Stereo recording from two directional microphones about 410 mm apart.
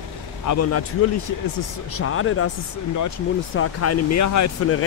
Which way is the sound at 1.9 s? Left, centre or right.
Left.